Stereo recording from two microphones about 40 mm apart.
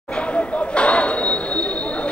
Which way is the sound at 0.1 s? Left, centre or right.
Left.